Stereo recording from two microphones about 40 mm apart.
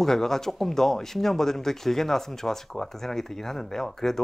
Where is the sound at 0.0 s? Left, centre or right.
Centre.